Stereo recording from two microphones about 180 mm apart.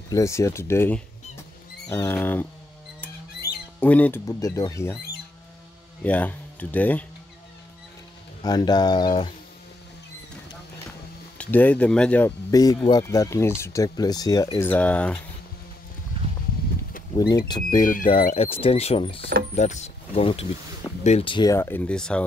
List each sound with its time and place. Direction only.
0.1 s speech: 15° left (ahead or behind)
3.4 s squawk: 5° right (ahead or behind)
3.8 s speech: 10° left (ahead or behind)
6.0 s speech: 10° left (ahead or behind)
8.4 s speech: 20° left (ahead or behind)
11.3 s speech: 10° left (ahead or behind)
12.4 s speech: 20° left (ahead or behind)
14.6 s speech: 10° left (ahead or behind)
17.5 s speech: 25° left (ahead or behind); by 22.2 s 5° left (ahead or behind)